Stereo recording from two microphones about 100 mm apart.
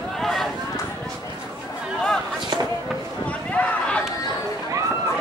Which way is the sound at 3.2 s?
15° left (ahead or behind).